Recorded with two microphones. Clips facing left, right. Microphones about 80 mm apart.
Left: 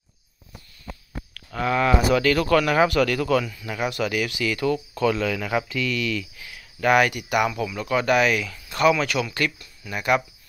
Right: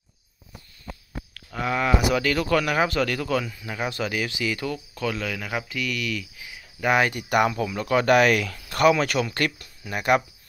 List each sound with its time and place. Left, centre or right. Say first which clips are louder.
1.5 s speech: left 3 dB; centre
4.7 s speech: left 6 dB; centre
7.1 s speech: right 1 dB; right